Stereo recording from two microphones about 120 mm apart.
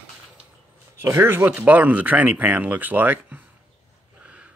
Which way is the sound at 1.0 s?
20° right (ahead or behind).